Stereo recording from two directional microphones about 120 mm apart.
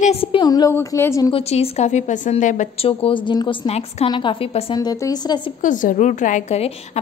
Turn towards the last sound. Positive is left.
turn(degrees=55)  # may be behind; listen again after turning